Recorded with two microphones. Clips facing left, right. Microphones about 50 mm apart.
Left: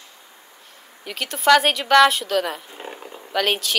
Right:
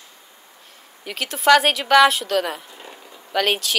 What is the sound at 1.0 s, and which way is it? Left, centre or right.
Speech, centre.